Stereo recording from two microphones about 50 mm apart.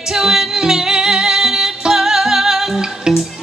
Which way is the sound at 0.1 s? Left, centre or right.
Centre.